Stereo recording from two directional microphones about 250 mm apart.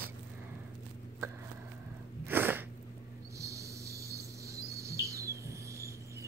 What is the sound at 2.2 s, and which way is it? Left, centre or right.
Sneeze, centre.